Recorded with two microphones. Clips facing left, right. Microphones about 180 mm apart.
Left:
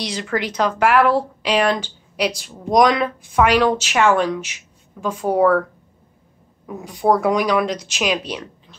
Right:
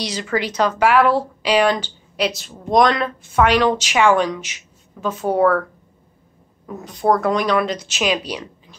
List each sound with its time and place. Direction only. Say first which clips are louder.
0.0 s speech: right 1 dB; 5° right (ahead or behind)
6.6 s speech: left 1 dB; centre (ahead or behind)
7.9 s speech: right 2 dB; 5° right (ahead or behind)